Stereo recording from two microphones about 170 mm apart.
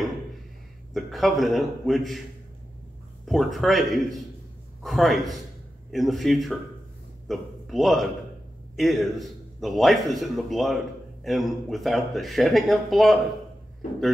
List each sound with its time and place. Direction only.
0.9 s a man's voice: centre (ahead or behind)
3.3 s a man's voice: centre (ahead or behind)